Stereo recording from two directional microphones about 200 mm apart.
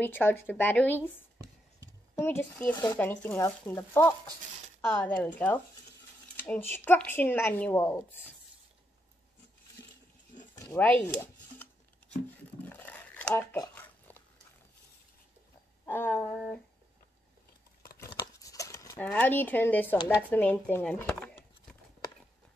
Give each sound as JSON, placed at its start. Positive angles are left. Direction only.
{"t": 0.0, "sound": "speech", "side_deg": 10}
{"t": 2.1, "sound": "speech", "side_deg": 10}
{"t": 3.0, "sound": "speech", "side_deg": 10}
{"t": 10.5, "sound": "a sound", "side_deg": 15}
{"t": 15.8, "sound": "speech", "side_deg": 10}
{"t": 17.9, "sound": "crumpling", "side_deg": 15}
{"t": 19.0, "sound": "speech", "side_deg": 10}